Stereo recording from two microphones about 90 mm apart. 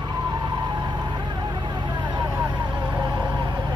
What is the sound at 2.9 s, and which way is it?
Vehicle, 35° right (ahead or behind).